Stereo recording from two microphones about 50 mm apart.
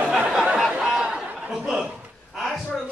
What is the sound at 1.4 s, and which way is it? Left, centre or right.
Chuckle, centre.